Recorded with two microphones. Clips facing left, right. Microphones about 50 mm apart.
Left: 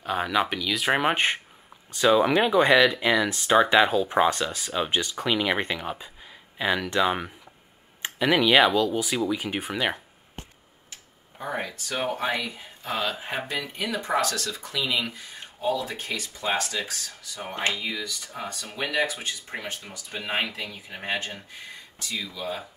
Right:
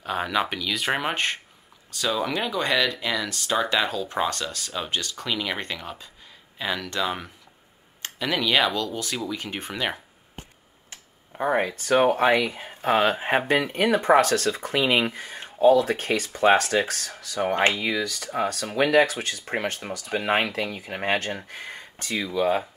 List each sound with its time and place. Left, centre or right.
0.0 s speech: centre
1.0 s speech: centre
10.9 s tick-tock: right
11.5 s speech: right
13.5 s speech: right